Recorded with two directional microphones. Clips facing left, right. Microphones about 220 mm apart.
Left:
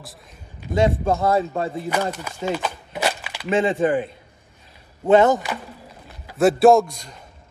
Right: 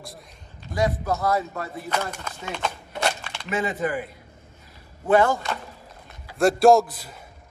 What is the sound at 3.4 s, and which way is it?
Speech, 30° left (ahead or behind).